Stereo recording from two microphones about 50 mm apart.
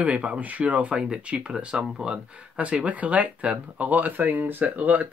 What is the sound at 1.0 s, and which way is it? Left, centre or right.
Speech, centre.